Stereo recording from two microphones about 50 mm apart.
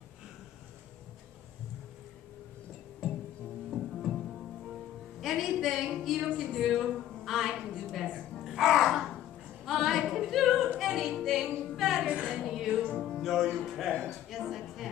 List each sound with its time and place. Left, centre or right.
3.7 s music: centre
5.2 s a woman's voice: centre
6.6 s music: centre
7.8 s a woman's voice: centre
8.5 s music: centre
9.7 s singing: centre
10.8 s music: centre
11.7 s a sound: centre
12.1 s a woman's voice: right
12.4 s music: centre
13.2 s speech: centre
13.7 s a sound: centre